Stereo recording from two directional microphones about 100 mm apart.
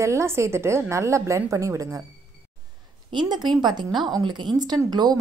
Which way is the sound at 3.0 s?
45° right (ahead or behind).